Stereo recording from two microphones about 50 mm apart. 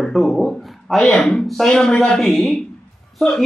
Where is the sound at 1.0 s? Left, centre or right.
Centre.